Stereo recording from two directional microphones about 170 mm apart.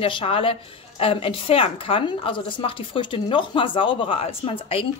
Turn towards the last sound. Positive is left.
turn(degrees=35)  # may be behind; listen again after turning